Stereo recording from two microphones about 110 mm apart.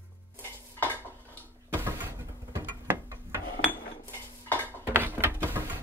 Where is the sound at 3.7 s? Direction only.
20° left (ahead or behind).